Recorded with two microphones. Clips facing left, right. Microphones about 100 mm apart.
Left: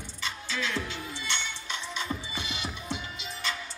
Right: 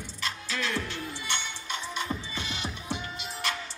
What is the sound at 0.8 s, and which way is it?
Music, 55° right (ahead or behind).